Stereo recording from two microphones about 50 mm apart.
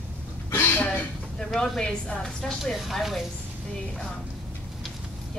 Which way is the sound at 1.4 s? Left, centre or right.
Centre.